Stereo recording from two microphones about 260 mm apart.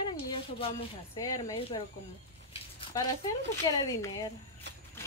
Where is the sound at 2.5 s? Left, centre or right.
Centre.